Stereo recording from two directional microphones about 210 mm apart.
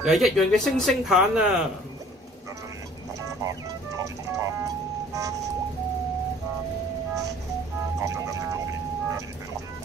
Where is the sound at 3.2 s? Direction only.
15° right (ahead or behind).